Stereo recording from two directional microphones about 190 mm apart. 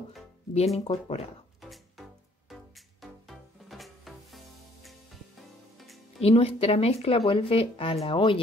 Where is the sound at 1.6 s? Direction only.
Centre (ahead or behind).